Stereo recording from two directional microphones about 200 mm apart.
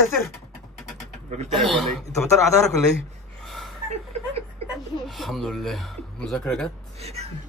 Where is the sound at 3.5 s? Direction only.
Centre (ahead or behind).